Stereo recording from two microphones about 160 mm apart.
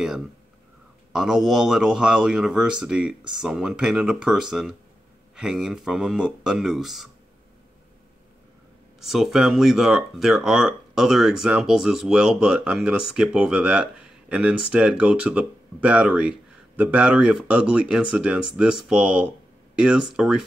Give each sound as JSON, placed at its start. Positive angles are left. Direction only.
{"t": 1.1, "sound": "speech", "side_deg": 0}
{"t": 9.0, "sound": "speech", "side_deg": 0}